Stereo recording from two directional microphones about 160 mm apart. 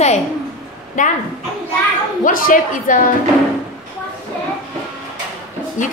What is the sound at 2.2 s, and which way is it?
Speech, 55° left (ahead or behind).